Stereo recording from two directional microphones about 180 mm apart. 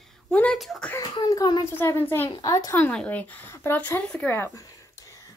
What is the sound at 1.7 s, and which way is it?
A woman's voice, 10° left (ahead or behind).